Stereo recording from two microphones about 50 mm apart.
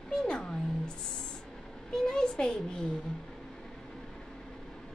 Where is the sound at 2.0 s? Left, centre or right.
Centre.